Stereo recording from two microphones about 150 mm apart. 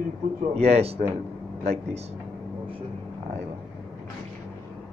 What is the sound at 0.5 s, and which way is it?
Speech, 45° right (ahead or behind).